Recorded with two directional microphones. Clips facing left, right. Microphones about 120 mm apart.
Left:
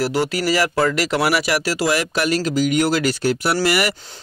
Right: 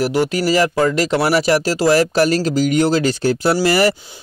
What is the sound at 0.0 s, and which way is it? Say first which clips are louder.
Speech: right 3 dB; 15° right (ahead or behind).